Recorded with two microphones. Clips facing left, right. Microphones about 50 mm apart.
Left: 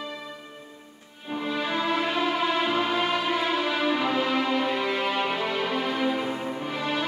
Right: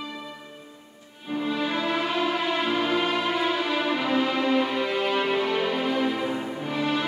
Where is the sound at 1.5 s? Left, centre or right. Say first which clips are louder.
Even; centre.